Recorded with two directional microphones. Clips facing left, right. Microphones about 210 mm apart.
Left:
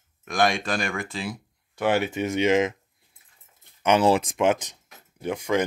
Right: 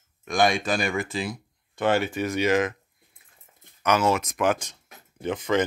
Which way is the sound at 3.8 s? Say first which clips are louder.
Left 3 dB; 30° left (ahead or behind).